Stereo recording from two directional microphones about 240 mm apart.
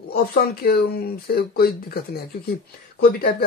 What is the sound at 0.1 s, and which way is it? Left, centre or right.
Speech, left.